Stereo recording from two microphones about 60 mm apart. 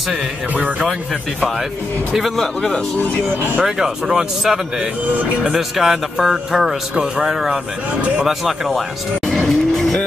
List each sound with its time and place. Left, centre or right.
0.1 s speech: right
2.1 s speech: centre
3.6 s speech: centre
9.3 s vehicle: centre